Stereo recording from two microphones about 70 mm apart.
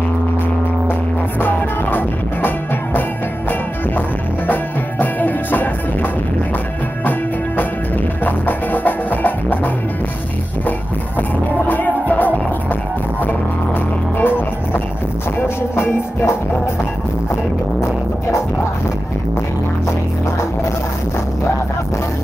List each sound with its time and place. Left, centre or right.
1.4 s music: left
4.5 s music: left
8.2 s music: left
11.1 s music: left
14.1 s music: left